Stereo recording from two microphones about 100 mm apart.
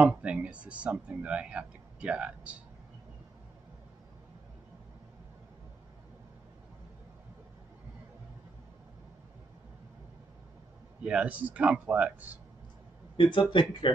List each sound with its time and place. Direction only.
0.0 s speech: 15° right (ahead or behind)
11.0 s speech: 15° right (ahead or behind)
13.1 s speech: 50° left (ahead or behind)